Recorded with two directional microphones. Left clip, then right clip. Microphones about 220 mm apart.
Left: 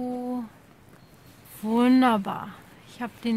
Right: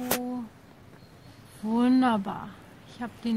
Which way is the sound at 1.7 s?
35° left (ahead or behind).